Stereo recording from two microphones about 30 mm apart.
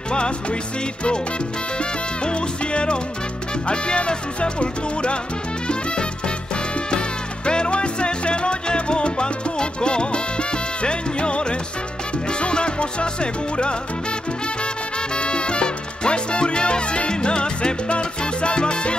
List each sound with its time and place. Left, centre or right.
0.1 s music: left
1.8 s salsa music: left
3.6 s music: left
7.4 s salsa music: left
12.3 s music: left
15.1 s music: left